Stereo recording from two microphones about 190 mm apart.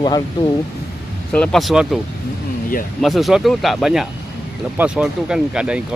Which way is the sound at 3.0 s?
Centre (ahead or behind).